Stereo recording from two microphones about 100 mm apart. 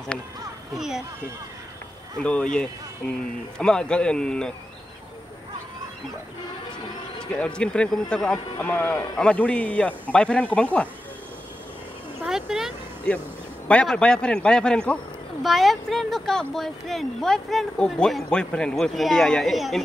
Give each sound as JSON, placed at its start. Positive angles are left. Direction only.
{"t": 0.7, "sound": "speech", "side_deg": -5}
{"t": 2.1, "sound": "speech", "side_deg": 10}
{"t": 7.2, "sound": "speech", "side_deg": 10}
{"t": 8.5, "sound": "speech", "side_deg": 20}
{"t": 12.3, "sound": "speech", "side_deg": -5}
{"t": 13.1, "sound": "speech", "side_deg": 10}